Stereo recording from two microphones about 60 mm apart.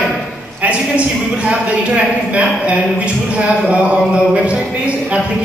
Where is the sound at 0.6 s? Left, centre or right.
Right.